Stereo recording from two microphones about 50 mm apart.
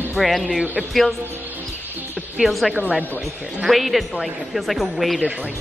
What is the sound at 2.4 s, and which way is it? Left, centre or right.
Speech, centre.